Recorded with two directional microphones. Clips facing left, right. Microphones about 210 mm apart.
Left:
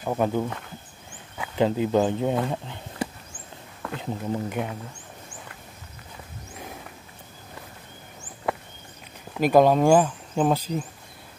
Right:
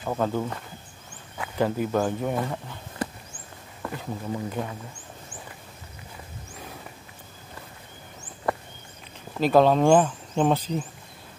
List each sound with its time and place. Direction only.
0.0 s speech: 15° left (ahead or behind)
1.6 s speech: 20° left (ahead or behind)
9.4 s speech: 10° left (ahead or behind)